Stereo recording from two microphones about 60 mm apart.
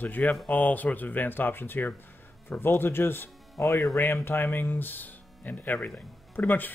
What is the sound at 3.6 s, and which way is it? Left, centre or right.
Speech, left.